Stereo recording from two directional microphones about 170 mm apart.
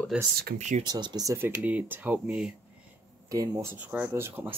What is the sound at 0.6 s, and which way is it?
Speech, 40° right (ahead or behind).